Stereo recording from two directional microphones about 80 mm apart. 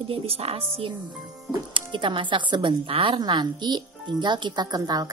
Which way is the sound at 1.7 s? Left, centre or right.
Right.